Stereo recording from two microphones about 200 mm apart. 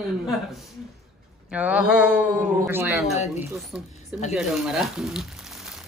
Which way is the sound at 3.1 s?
35° left (ahead or behind).